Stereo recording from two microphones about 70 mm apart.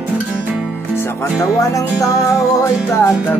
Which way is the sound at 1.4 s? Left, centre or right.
Left.